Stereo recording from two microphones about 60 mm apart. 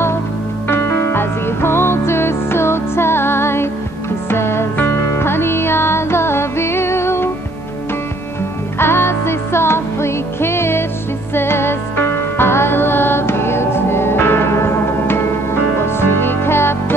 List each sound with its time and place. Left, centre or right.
0.7 s music: left
8.7 s music: left